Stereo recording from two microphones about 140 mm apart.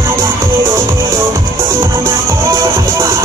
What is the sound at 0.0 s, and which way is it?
Music, 20° right (ahead or behind).